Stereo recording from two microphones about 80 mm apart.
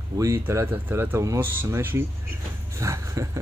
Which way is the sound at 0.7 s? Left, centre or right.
Right.